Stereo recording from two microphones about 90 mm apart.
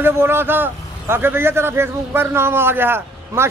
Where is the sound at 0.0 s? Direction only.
25° right (ahead or behind).